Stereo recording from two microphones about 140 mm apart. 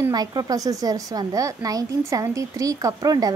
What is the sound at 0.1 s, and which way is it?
A woman's voice, 25° right (ahead or behind).